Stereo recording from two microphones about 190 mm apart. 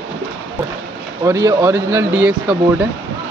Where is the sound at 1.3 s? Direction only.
15° right (ahead or behind).